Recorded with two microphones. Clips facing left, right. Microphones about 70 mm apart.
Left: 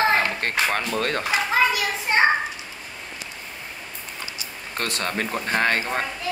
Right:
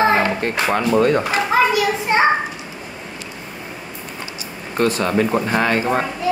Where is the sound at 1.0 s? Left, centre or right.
Right.